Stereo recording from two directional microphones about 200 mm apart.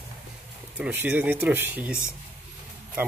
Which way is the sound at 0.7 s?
10° right (ahead or behind).